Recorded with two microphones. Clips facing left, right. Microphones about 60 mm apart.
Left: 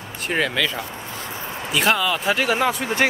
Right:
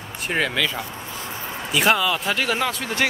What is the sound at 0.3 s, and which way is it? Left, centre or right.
Speech, centre.